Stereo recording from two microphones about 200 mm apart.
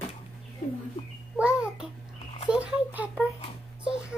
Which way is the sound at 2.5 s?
5° right (ahead or behind).